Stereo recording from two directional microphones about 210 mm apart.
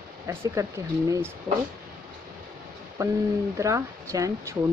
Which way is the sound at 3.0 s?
15° right (ahead or behind).